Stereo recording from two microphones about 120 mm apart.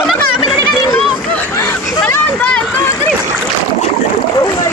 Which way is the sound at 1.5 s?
20° left (ahead or behind).